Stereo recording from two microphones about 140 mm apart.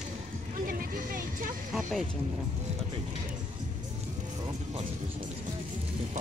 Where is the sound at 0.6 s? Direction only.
90° right.